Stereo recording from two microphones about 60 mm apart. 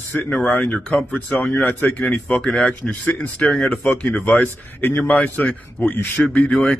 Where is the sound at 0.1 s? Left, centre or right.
Left.